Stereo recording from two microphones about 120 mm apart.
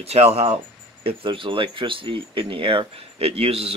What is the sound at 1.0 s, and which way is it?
Speech, 45° right (ahead or behind).